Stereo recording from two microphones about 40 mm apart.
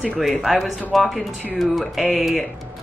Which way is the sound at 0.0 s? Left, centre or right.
Centre.